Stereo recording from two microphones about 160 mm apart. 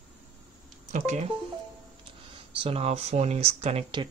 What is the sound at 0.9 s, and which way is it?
Music, 50° right (ahead or behind).